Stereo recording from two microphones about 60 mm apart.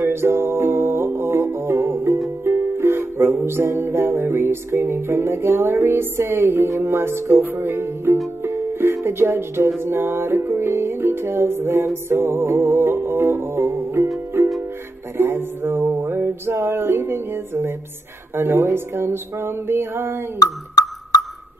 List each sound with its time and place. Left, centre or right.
0.1 s music: right
4.7 s music: right
5.0 s music: right
17.0 s a woman's voice: right
18.6 s music: right